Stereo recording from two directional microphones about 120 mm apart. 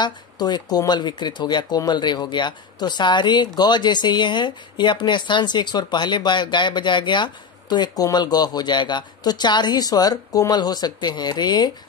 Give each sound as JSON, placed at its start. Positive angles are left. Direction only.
{"t": 0.0, "sound": "speech", "side_deg": 35}